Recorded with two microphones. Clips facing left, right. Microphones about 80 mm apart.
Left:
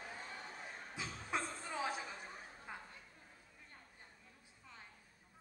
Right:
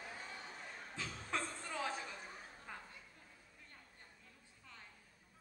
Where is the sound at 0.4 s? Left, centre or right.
Centre.